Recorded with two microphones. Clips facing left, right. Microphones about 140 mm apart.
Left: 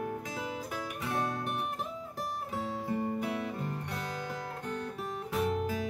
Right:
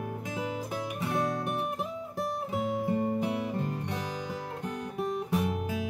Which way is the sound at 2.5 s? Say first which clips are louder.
Right 5 dB; 20° right (ahead or behind).